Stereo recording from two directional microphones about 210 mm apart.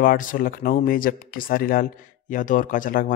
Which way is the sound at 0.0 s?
40° left (ahead or behind).